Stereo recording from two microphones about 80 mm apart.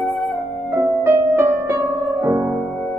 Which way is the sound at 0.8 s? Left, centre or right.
Right.